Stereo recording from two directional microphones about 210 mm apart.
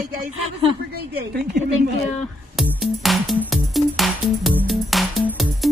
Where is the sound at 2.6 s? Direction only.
Centre (ahead or behind).